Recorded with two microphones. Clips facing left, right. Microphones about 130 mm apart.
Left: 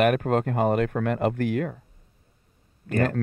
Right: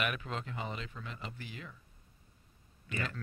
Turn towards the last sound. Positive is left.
turn(degrees=50)  # may be behind; listen again after turning